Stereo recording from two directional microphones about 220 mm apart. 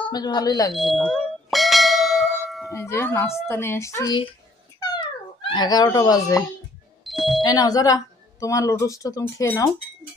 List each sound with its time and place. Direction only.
0.1 s speech: 20° left (ahead or behind)
0.7 s bell: centre (ahead or behind)
2.7 s speech: 10° left (ahead or behind)
5.5 s speech: 20° left (ahead or behind)
7.1 s music: centre (ahead or behind)
7.4 s speech: 15° left (ahead or behind)